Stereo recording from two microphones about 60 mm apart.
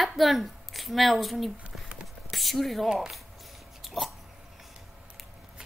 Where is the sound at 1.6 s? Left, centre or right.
Centre.